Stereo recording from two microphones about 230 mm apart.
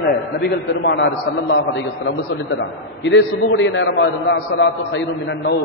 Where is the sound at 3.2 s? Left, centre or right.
Left.